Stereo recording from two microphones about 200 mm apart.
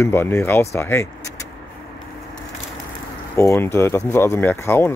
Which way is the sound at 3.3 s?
15° left (ahead or behind).